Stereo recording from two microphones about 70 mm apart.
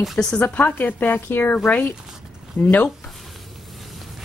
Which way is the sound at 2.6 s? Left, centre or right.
Left.